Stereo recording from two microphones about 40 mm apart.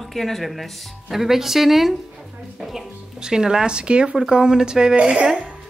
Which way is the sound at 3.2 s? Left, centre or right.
Centre.